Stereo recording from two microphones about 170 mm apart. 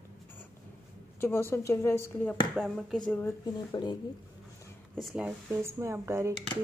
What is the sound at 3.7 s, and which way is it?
Speech, 25° left (ahead or behind).